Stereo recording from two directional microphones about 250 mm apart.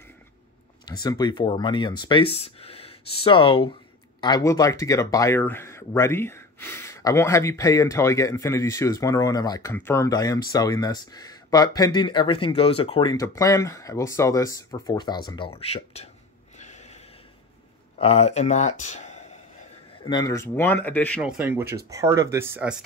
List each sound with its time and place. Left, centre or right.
0.8 s speech: centre
16.5 s a sound: left
17.9 s speech: left
20.1 s speech: centre
21.2 s speech: centre